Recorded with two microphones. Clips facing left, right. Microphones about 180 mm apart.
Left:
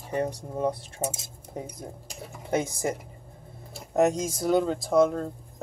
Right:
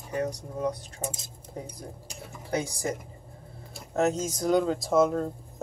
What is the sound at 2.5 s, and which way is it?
Speech, 20° left (ahead or behind).